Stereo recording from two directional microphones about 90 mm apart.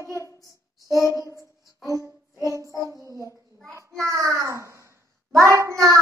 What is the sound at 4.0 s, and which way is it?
A child's voice, 35° right (ahead or behind).